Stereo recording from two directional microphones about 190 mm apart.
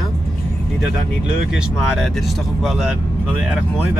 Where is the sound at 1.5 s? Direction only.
Centre (ahead or behind).